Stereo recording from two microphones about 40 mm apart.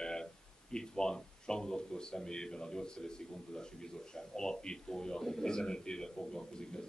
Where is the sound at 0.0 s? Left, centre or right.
Centre.